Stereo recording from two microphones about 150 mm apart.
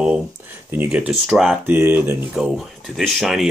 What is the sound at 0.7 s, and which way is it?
Speech, 10° right (ahead or behind).